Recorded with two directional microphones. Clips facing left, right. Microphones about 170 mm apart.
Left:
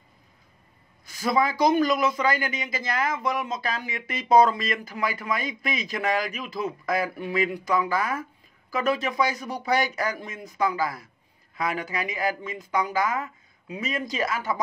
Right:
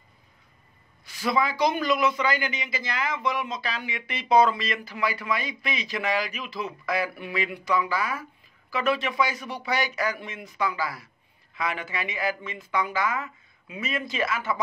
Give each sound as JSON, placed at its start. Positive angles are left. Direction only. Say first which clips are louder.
{"t": 1.0, "sound": "a man's voice", "louder": "left 2 dB", "side_deg": 45}